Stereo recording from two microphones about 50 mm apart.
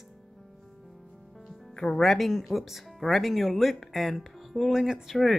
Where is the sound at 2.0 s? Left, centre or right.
Centre.